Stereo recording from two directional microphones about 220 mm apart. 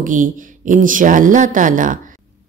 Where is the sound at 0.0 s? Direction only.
35° right (ahead or behind).